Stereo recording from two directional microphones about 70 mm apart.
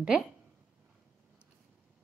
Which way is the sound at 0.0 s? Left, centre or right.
Centre.